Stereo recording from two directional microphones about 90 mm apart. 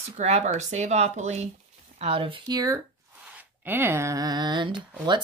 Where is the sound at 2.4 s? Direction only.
45° right (ahead or behind).